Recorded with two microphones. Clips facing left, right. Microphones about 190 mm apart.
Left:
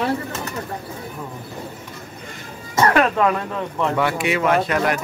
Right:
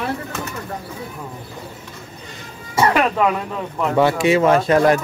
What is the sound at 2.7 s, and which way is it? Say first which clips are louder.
Speech: even; 10° right (ahead or behind).